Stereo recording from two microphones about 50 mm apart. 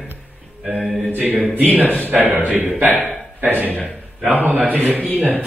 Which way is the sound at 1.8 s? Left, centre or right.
Left.